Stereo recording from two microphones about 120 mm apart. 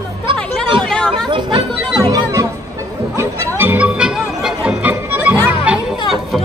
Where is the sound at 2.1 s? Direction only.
25° right (ahead or behind); by 6.4 s 5° right (ahead or behind).